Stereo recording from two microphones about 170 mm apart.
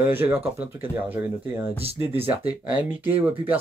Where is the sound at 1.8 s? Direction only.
35° right (ahead or behind).